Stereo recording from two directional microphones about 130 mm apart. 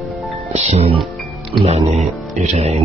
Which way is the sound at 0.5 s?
55° right (ahead or behind).